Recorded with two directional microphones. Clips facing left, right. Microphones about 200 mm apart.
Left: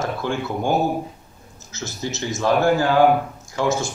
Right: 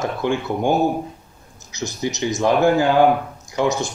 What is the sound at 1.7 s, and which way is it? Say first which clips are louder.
Speech: right 4 dB; 15° right (ahead or behind).